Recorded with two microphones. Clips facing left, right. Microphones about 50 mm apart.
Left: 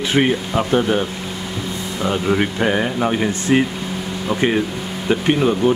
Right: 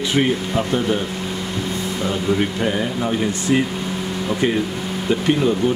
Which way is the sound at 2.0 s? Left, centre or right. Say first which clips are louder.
Left 3 dB; left.